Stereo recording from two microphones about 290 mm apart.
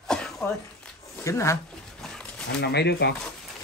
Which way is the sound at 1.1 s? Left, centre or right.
Centre.